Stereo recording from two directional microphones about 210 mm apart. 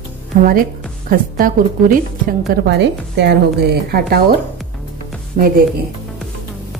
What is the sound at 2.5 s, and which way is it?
A woman's voice, 55° right (ahead or behind).